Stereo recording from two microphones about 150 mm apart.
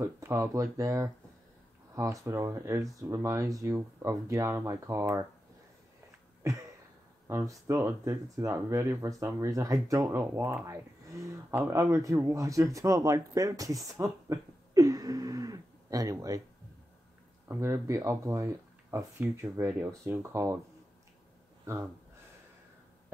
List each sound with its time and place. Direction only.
0.0 s speech: 20° right (ahead or behind)
7.2 s speech: 20° right (ahead or behind)
17.5 s speech: 20° right (ahead or behind)